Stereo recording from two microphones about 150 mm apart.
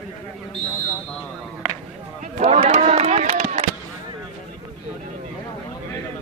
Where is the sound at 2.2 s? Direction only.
45° right (ahead or behind).